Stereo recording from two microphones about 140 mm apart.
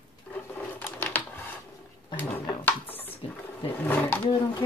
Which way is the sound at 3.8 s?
15° left (ahead or behind).